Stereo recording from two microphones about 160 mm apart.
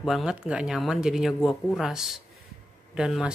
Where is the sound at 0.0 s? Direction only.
5° right (ahead or behind).